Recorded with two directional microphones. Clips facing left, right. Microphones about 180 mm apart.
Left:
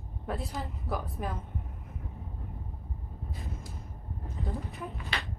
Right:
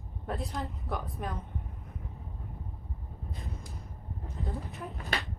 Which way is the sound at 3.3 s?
Centre (ahead or behind).